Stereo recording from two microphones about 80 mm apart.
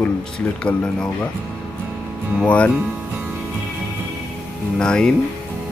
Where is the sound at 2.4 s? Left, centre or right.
Centre.